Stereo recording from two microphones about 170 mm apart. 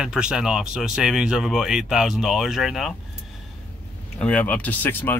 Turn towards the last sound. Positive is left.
turn(degrees=10)  # may be behind; listen again after turning